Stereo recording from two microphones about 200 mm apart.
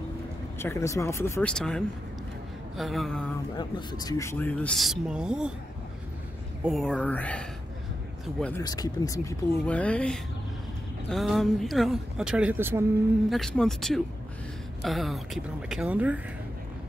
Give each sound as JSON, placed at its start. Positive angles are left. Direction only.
{"t": 0.6, "sound": "speech", "side_deg": 15}
{"t": 3.5, "sound": "speech", "side_deg": 20}
{"t": 6.6, "sound": "speech", "side_deg": 0}
{"t": 8.6, "sound": "speech", "side_deg": 20}
{"t": 9.7, "sound": "speech", "side_deg": 5}
{"t": 13.3, "sound": "speech", "side_deg": 0}